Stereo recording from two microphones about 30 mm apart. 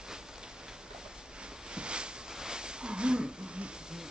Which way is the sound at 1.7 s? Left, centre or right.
Right.